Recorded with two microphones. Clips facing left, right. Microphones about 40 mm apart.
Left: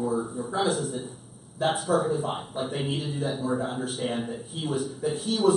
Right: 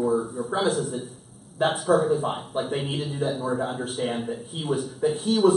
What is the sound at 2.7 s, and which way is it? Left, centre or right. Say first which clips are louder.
Speech: right 2 dB; right.